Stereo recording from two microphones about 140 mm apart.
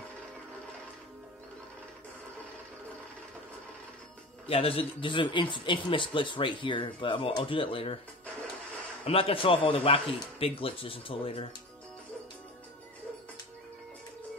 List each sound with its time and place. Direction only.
4.5 s a man's voice: 40° left (ahead or behind)
9.0 s a man's voice: 40° left (ahead or behind)